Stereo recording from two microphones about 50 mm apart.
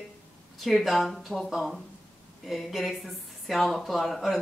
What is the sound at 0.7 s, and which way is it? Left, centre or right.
Speech, centre.